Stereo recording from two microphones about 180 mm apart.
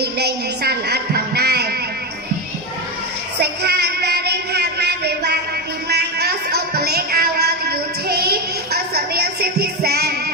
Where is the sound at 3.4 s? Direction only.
65° right (ahead or behind).